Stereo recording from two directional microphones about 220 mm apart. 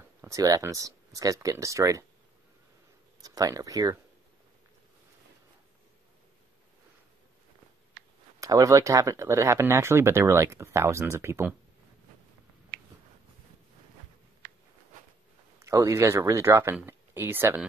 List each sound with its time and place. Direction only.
0.2 s speech: 15° right (ahead or behind)
3.2 s speech: 15° right (ahead or behind)
8.4 s speech: 15° right (ahead or behind)
15.6 s speech: 15° right (ahead or behind)